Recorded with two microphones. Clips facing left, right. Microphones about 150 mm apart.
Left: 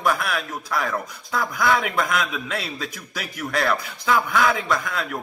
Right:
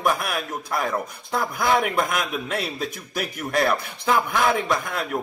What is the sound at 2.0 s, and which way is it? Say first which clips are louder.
A man's voice: left 1 dB; 50° right (ahead or behind).